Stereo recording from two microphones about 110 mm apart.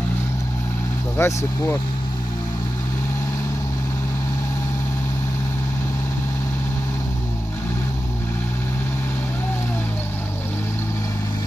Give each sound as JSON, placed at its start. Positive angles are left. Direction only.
{"t": 1.1, "sound": "speech", "side_deg": 20}